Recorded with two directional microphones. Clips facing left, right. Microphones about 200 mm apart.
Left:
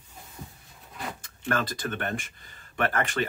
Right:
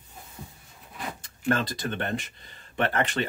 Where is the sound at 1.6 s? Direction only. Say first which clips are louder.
Right 1 dB; 25° right (ahead or behind).